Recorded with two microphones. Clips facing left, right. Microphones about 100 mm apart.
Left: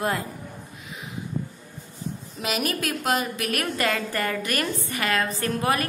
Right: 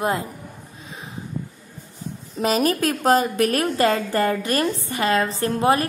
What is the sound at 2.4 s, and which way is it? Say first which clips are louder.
A woman's voice: right 8 dB; 35° right (ahead or behind).